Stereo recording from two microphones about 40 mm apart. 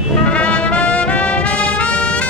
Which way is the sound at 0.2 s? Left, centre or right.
Left.